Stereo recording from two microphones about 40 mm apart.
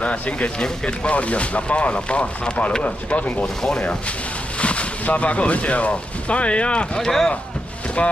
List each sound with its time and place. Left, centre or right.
0.0 s speech: left
0.6 s speech: left
4.6 s speech: left
7.0 s speech: centre